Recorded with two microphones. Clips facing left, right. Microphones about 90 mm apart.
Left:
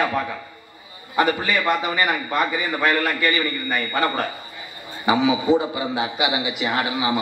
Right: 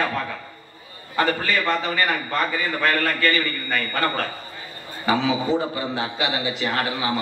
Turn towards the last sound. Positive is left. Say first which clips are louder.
# left 2 dB
turn(degrees=15)  # may be behind; listen again after turning